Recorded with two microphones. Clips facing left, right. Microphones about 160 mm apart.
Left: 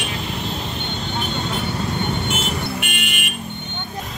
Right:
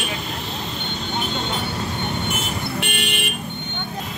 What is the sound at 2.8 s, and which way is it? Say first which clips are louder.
Vehicle: right 2 dB; 35° right (ahead or behind).